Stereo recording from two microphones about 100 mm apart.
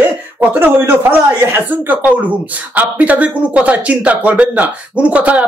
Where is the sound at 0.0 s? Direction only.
15° right (ahead or behind).